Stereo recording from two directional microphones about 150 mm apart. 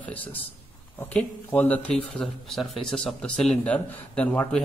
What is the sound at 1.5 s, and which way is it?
A man's voice, 10° left (ahead or behind).